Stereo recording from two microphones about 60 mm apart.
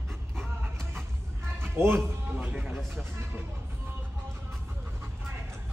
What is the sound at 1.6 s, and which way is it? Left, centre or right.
Speech, right.